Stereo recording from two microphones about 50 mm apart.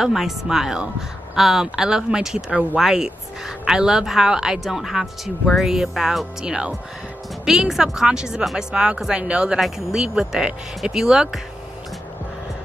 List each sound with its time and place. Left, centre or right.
0.0 s a woman's voice: centre